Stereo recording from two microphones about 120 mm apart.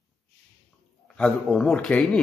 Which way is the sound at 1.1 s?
10° left (ahead or behind).